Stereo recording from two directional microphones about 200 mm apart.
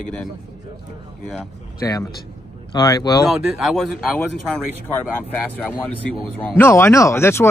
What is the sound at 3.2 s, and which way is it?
Speech, centre (ahead or behind).